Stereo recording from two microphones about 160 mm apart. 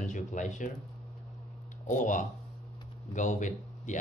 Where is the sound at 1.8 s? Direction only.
50° left (ahead or behind).